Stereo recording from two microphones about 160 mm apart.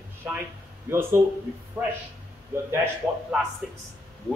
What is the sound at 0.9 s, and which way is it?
Speech, 15° right (ahead or behind).